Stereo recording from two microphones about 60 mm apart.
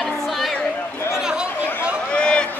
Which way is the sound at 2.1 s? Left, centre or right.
Centre.